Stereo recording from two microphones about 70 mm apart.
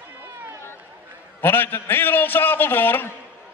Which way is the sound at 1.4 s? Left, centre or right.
Left.